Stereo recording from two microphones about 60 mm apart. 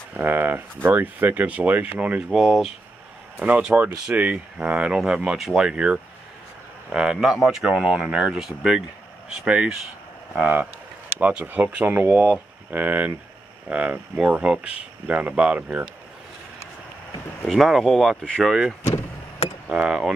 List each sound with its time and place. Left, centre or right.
0.2 s speech: right
2.3 s speech: centre
3.3 s speech: right
10.4 s speech: right
17.5 s speech: centre
19.7 s speech: centre